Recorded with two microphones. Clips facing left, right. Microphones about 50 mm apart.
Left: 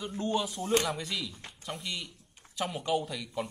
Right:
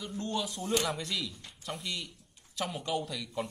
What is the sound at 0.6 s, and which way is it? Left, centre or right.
Speech, left.